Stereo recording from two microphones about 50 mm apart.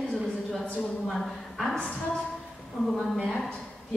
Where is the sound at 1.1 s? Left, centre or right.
Centre.